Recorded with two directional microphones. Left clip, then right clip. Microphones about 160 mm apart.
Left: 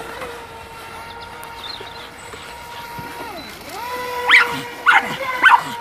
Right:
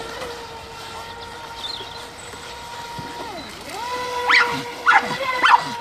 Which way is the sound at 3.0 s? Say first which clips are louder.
Left 1 dB; centre (ahead or behind).